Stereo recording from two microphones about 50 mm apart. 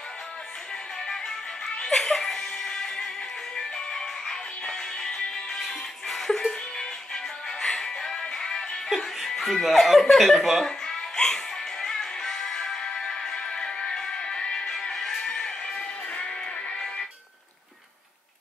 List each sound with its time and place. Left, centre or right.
1.0 s music: centre
8.9 s chuckle: centre
10.6 s music: centre